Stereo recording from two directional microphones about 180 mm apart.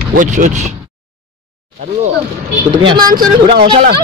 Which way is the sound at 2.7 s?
25° right (ahead or behind).